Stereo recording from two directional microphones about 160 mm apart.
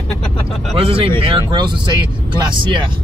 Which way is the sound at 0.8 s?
35° right (ahead or behind).